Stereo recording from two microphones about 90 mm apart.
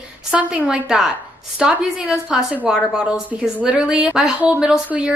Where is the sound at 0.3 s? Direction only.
15° right (ahead or behind).